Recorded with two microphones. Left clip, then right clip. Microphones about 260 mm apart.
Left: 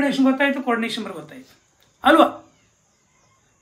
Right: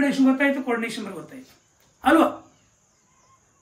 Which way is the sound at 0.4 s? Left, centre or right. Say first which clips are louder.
Left 2 dB; centre.